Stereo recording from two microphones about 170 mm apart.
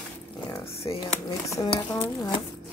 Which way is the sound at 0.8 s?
25° left (ahead or behind).